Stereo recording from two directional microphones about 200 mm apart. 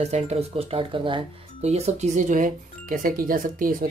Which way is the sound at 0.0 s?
30° right (ahead or behind).